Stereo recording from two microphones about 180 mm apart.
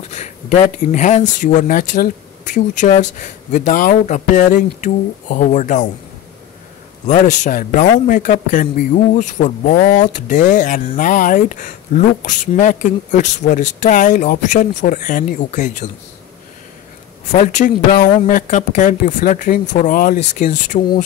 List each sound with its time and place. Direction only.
0.2 s speech: 40° left (ahead or behind)
7.1 s speech: 45° left (ahead or behind)
17.3 s speech: 40° left (ahead or behind)